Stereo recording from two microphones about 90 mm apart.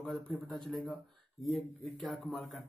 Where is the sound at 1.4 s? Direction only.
Centre (ahead or behind).